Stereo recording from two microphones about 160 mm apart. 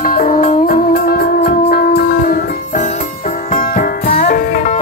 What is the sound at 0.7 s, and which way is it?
Music, 75° left (ahead or behind).